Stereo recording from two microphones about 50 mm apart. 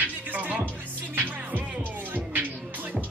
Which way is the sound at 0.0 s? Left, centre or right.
Right.